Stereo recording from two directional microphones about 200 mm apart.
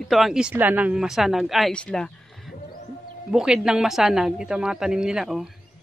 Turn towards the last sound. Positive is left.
turn(degrees=0)  # may be behind; listen again after turning